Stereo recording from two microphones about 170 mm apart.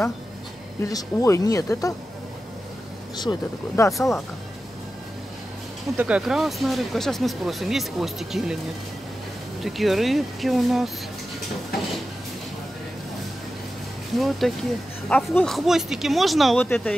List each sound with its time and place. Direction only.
0.8 s speech: 20° left (ahead or behind)
3.2 s speech: 20° left (ahead or behind)
5.9 s speech: 5° right (ahead or behind)
9.6 s speech: centre (ahead or behind)
14.1 s speech: centre (ahead or behind)